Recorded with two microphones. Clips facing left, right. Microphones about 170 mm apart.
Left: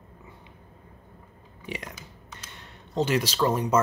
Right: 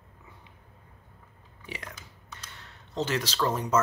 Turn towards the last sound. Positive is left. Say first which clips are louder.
# left 3 dB
turn(degrees=10)  # may be behind; listen again after turning